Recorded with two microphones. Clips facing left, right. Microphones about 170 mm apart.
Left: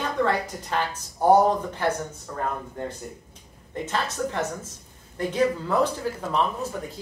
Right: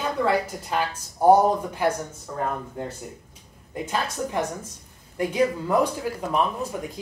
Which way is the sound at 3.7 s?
10° right (ahead or behind).